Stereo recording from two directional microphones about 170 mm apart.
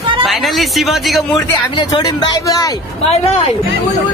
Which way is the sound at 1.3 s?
20° left (ahead or behind).